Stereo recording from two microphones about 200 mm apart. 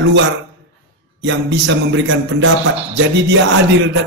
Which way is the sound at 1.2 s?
70° right (ahead or behind).